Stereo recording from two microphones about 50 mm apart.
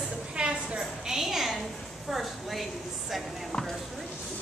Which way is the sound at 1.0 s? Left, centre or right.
Centre.